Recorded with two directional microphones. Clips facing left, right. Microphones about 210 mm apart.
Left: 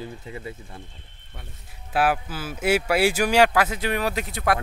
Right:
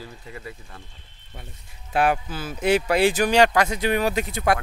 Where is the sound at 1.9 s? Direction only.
5° left (ahead or behind).